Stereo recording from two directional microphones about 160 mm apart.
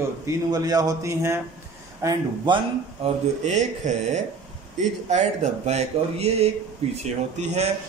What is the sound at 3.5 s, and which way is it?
Speech, 45° right (ahead or behind).